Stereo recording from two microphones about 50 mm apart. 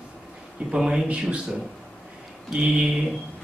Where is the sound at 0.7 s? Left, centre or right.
Centre.